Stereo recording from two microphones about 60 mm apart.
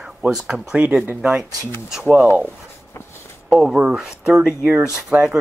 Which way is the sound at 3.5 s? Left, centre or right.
Centre.